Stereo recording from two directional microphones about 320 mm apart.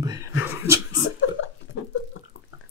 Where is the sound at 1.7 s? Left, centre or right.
Left.